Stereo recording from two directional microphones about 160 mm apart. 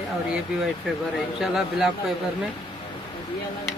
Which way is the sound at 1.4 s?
Centre (ahead or behind).